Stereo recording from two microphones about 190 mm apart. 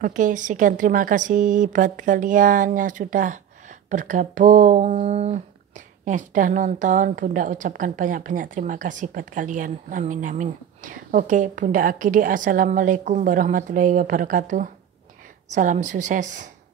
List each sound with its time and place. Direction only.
0.0 s speech: 45° right (ahead or behind)